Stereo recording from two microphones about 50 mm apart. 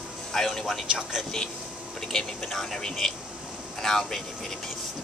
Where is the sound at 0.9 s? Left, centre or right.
Centre.